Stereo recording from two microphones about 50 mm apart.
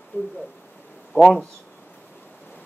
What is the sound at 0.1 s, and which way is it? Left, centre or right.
Speech, left.